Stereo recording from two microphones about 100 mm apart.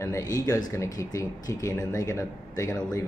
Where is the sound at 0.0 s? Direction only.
35° left (ahead or behind).